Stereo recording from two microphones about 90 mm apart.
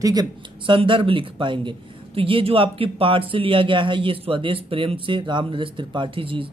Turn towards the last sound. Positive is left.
turn(degrees=-80)